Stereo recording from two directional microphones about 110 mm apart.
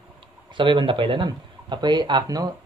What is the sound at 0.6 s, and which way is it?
Speech, 50° right (ahead or behind).